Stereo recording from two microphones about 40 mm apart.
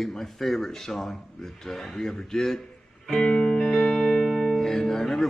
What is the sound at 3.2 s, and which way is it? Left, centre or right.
Music, centre.